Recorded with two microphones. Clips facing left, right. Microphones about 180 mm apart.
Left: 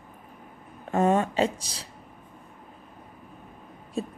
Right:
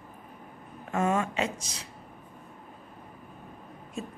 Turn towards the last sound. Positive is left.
turn(degrees=35)  # may be behind; listen again after turning